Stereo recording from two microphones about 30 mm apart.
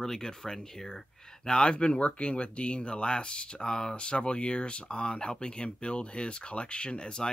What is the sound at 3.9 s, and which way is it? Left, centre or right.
Speech, left.